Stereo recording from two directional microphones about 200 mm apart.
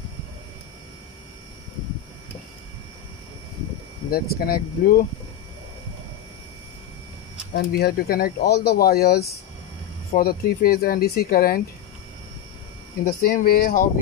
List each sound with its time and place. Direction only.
4.1 s speech: 50° left (ahead or behind)
7.5 s speech: 55° left (ahead or behind)
13.0 s speech: 45° left (ahead or behind)